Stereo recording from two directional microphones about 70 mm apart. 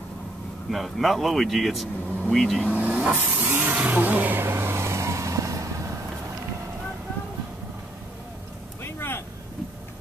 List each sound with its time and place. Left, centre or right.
0.7 s speech: centre
2.7 s vehicle: right
8.8 s vehicle: left